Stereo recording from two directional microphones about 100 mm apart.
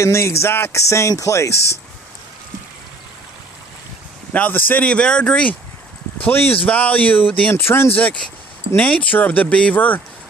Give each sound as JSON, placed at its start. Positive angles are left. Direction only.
{"t": 0.0, "sound": "speech", "side_deg": 25}
{"t": 4.3, "sound": "speech", "side_deg": 15}